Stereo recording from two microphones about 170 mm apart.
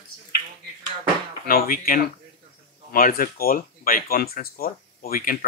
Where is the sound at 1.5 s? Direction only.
55° left (ahead or behind).